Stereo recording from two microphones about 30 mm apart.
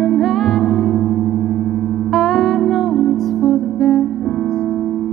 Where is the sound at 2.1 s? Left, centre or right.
Centre.